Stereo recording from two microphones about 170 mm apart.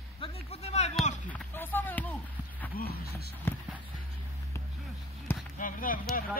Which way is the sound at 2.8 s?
65° left (ahead or behind).